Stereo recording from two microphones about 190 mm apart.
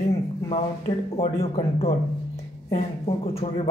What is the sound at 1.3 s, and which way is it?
Speech, 35° left (ahead or behind).